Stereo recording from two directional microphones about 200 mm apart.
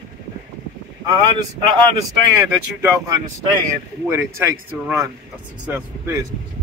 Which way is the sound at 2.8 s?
15° right (ahead or behind).